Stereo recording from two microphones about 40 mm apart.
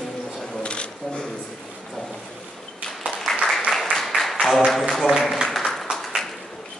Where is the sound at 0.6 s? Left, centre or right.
Left.